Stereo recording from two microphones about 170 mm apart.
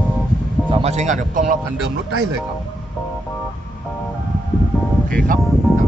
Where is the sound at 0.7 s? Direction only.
40° right (ahead or behind).